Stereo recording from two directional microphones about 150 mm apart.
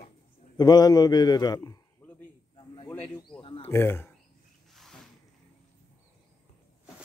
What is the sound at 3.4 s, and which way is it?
Wild animals, 35° left (ahead or behind).